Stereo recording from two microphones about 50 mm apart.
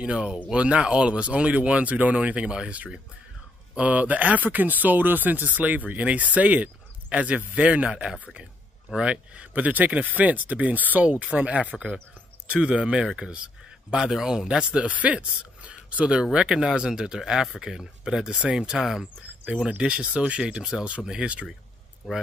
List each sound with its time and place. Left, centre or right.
0.0 s speech: centre
14.6 s speech: right
16.3 s speech: centre
19.8 s speech: right